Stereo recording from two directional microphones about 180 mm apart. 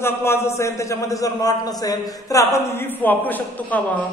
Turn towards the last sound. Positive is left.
turn(degrees=10)  # may be behind; listen again after turning